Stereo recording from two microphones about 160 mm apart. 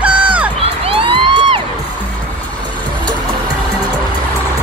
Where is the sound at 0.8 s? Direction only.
35° right (ahead or behind).